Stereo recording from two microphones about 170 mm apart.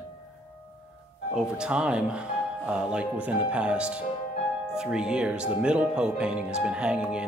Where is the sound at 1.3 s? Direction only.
5° right (ahead or behind).